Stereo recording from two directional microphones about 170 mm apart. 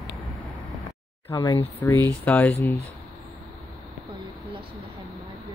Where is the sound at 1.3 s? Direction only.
20° left (ahead or behind).